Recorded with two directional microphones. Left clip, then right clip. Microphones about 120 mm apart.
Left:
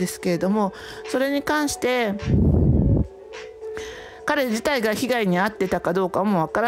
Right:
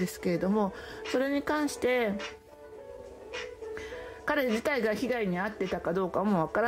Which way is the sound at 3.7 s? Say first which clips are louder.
Left 6 dB; 40° left (ahead or behind).